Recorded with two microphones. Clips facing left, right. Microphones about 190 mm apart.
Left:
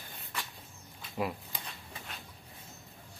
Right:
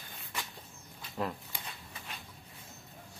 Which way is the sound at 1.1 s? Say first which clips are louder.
Left 1 dB; 10° left (ahead or behind).